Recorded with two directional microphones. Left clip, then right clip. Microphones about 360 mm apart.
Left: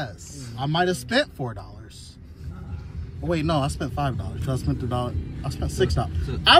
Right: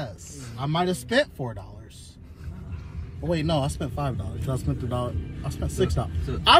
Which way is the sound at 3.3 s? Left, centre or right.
Centre.